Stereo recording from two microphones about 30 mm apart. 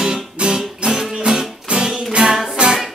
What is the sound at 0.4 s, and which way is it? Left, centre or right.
Music, right.